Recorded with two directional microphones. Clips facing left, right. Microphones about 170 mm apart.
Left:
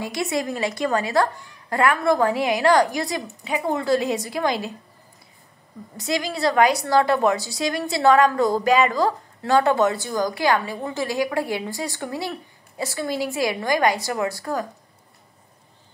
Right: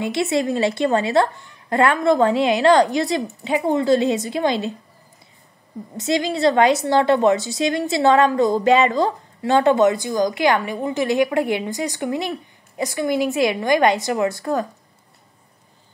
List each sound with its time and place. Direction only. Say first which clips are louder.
0.0 s a woman's voice: right 5 dB; 25° right (ahead or behind)
5.9 s a woman's voice: right 5 dB; 25° right (ahead or behind)